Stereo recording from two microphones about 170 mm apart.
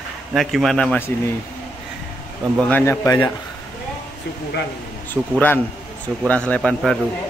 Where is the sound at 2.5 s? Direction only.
10° left (ahead or behind).